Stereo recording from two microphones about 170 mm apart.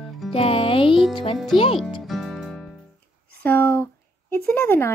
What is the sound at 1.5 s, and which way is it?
Speech, 30° left (ahead or behind).